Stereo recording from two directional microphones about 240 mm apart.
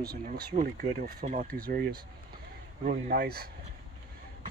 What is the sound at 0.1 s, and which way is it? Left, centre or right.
Speech, right.